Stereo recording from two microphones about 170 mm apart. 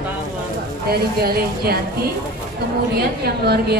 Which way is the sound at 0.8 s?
65° right (ahead or behind).